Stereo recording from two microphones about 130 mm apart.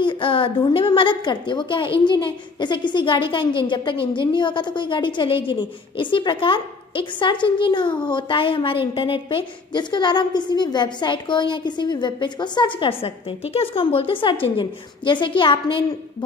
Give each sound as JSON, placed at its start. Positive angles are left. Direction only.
{"t": 0.0, "sound": "a woman's voice", "side_deg": 40}